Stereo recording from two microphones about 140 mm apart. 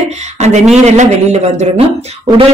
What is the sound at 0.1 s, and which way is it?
Speech, 55° right (ahead or behind).